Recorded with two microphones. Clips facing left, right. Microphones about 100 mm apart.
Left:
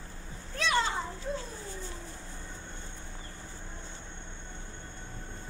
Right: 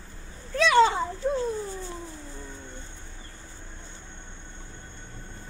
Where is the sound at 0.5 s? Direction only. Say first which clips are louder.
Right 10 dB; 90° right.